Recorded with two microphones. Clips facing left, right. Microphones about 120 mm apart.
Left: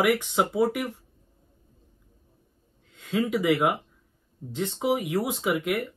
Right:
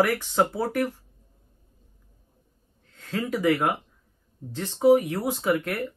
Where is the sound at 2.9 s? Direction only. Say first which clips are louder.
Left 3 dB; 15° left (ahead or behind).